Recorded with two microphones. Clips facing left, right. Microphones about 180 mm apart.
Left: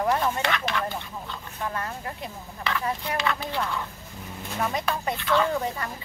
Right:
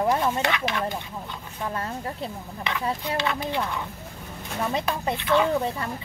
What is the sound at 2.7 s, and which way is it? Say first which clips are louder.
Speech: right 1 dB; 20° right (ahead or behind).